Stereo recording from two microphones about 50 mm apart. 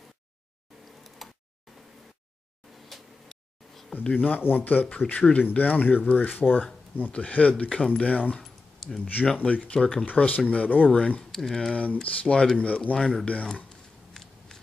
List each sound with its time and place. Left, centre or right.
1.2 s a sound: centre
2.9 s a sound: centre
4.1 s speech: left
4.8 s speech: left
7.0 s speech: left
8.4 s keys jangling: centre
9.0 s speech: left
9.8 s speech: centre
10.0 s speech: left
10.9 s speech: left
11.3 s speech: centre
11.7 s speech: left
12.9 s speech: centre
14.1 s scissors: centre